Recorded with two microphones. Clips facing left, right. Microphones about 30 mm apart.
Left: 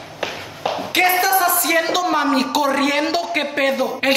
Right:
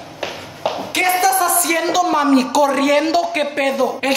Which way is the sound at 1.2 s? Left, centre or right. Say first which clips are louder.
Right 1 dB; left.